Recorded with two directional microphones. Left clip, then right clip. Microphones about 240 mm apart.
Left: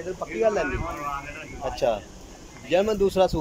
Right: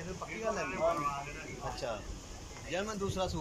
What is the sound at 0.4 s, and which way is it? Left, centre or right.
Speech, left.